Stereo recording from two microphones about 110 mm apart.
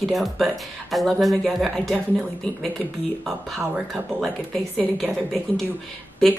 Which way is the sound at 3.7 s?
Centre (ahead or behind).